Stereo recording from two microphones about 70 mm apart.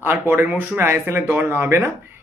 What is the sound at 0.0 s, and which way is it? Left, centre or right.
Speech, right.